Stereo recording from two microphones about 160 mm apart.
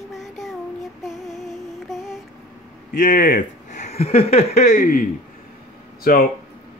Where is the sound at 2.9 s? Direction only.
55° left (ahead or behind).